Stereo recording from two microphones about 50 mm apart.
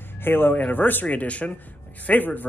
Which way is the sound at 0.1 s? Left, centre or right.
Left.